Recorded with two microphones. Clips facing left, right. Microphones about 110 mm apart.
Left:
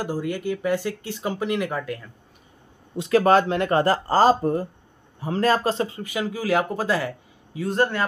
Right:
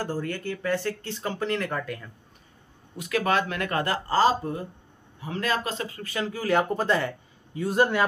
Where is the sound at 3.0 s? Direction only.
35° left (ahead or behind).